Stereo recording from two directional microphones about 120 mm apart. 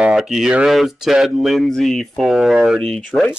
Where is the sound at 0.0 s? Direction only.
5° right (ahead or behind).